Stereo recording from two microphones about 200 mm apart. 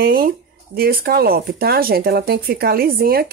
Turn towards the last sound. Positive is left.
turn(degrees=-50)  # may be behind; listen again after turning